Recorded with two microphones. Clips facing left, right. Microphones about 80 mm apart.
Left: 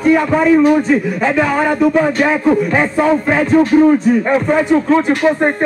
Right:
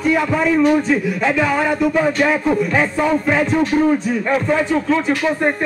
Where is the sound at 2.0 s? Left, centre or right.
Centre.